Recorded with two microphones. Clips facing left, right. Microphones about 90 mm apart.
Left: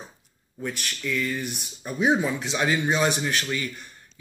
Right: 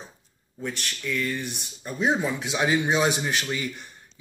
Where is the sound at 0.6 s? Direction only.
Centre (ahead or behind).